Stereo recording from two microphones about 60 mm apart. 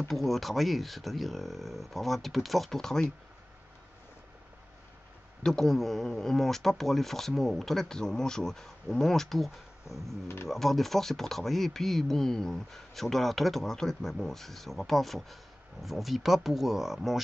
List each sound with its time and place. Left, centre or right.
0.1 s speech: centre
5.4 s speech: centre
10.2 s speech: left
10.5 s speech: centre